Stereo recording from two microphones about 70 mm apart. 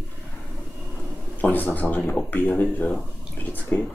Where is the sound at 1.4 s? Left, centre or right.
Left.